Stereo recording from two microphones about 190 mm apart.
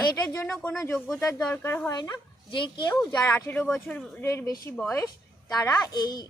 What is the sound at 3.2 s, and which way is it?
Speech, 10° left (ahead or behind).